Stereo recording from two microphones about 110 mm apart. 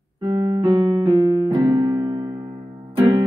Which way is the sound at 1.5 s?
45° right (ahead or behind).